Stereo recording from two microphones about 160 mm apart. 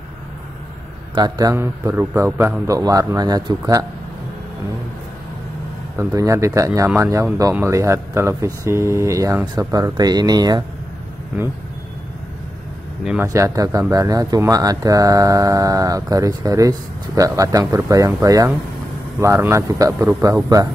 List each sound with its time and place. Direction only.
1.1 s speech: 25° right (ahead or behind)
5.9 s speech: 20° right (ahead or behind)
13.2 s speech: 20° right (ahead or behind)